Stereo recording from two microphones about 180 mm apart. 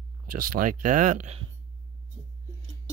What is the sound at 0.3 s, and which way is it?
Speech, 50° right (ahead or behind).